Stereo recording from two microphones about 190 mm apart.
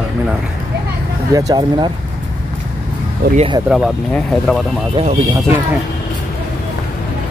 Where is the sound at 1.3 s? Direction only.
20° right (ahead or behind).